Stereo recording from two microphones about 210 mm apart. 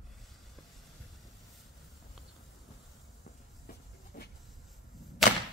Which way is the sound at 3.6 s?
50° left (ahead or behind).